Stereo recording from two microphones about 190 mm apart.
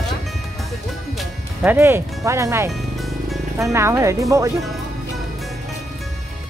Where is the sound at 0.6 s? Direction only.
Centre (ahead or behind).